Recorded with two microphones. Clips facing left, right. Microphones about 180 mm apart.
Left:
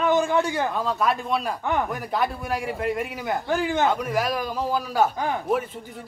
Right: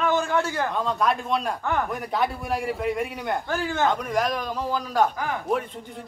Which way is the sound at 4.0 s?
5° left (ahead or behind).